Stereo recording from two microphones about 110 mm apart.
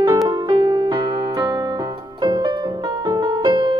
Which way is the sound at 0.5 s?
40° right (ahead or behind).